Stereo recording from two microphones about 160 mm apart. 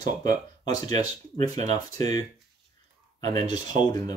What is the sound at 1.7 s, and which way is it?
Speech, 25° left (ahead or behind).